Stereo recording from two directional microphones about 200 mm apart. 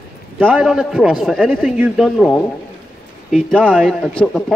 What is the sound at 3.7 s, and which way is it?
Speech, centre (ahead or behind).